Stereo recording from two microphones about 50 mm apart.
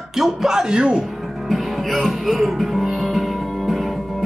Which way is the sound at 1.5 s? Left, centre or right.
Centre.